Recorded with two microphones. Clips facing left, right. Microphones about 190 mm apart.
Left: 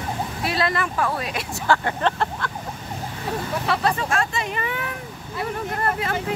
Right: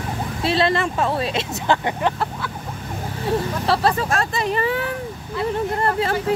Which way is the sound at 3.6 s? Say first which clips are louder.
Right 2 dB; 35° right (ahead or behind).